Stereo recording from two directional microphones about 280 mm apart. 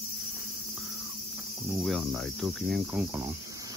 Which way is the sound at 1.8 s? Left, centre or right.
Centre.